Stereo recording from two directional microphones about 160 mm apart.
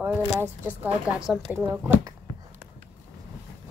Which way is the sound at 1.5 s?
15° right (ahead or behind).